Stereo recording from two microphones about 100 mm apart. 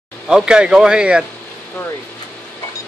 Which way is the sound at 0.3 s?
5° right (ahead or behind).